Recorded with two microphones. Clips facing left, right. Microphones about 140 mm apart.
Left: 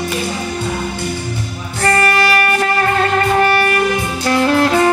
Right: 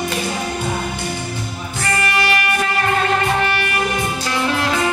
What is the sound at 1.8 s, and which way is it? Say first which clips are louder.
Music: left 6 dB; 45° left (ahead or behind).